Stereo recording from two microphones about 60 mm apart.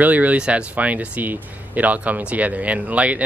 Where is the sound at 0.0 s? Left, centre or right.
Right.